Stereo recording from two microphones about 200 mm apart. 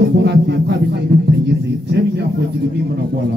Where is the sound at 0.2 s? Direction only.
55° right (ahead or behind).